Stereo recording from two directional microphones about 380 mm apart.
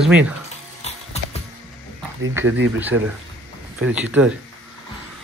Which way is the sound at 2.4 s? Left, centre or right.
Right.